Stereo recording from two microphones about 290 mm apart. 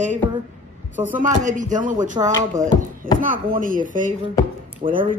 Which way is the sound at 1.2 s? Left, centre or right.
Right.